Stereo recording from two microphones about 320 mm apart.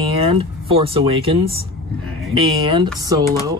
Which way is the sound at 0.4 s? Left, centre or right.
Centre.